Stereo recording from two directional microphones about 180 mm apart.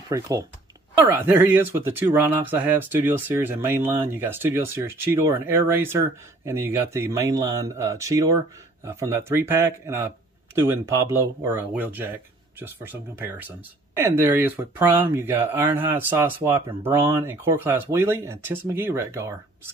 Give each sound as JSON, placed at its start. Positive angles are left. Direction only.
{"t": 0.1, "sound": "speech", "side_deg": -20}